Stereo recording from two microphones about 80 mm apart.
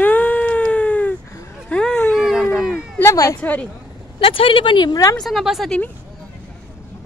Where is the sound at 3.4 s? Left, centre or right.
Centre.